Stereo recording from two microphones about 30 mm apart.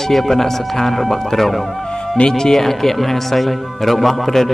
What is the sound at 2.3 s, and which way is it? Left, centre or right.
Speech, centre.